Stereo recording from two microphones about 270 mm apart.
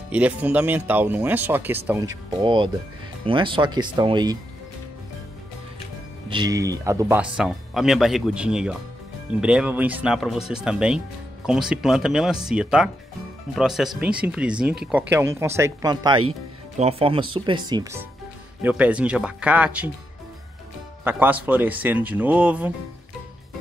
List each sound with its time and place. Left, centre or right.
0.1 s speech: centre
6.3 s speech: centre
21.0 s speech: centre